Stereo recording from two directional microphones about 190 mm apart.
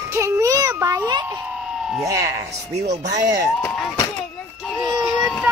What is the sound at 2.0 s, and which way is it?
Speech, 15° right (ahead or behind).